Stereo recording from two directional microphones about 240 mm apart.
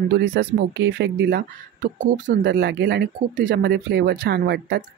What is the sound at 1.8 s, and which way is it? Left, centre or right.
Speech, right.